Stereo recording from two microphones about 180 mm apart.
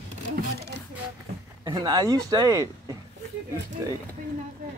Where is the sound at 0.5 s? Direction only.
70° right (ahead or behind).